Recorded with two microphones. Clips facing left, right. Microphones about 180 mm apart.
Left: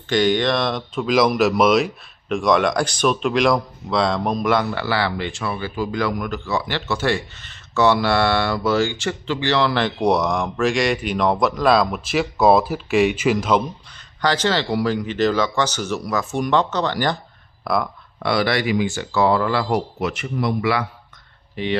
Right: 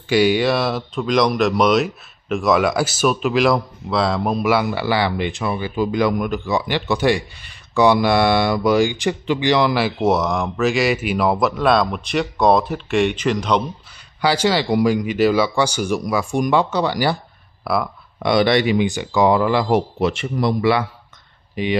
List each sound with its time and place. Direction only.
0.1 s speech: 10° right (ahead or behind)
13.9 s speech: 10° right (ahead or behind)
18.2 s speech: 20° right (ahead or behind)
20.0 s speech: 30° right (ahead or behind)
21.6 s speech: 15° right (ahead or behind)